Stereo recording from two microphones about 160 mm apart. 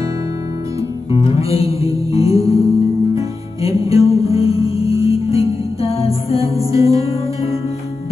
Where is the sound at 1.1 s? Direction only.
35° left (ahead or behind).